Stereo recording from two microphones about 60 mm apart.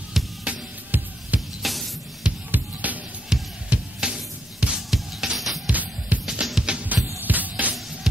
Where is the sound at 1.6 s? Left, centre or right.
Centre.